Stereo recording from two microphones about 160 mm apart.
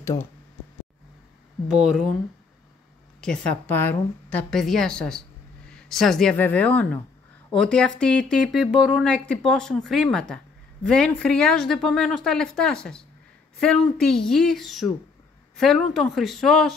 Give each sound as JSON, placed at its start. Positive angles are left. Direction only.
{"t": 0.0, "sound": "speech", "side_deg": 15}
{"t": 1.7, "sound": "a woman's voice", "side_deg": -5}
{"t": 3.2, "sound": "a woman's voice", "side_deg": 5}
{"t": 9.0, "sound": "a woman's voice", "side_deg": 5}